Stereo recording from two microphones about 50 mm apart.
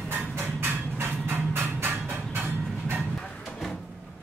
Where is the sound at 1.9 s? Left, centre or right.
Right.